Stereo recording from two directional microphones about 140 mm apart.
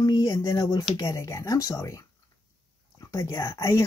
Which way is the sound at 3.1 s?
25° left (ahead or behind).